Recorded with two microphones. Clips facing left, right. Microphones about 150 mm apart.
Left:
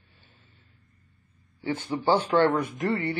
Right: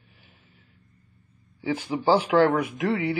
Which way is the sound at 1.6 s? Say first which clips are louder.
Right 2 dB; 10° right (ahead or behind).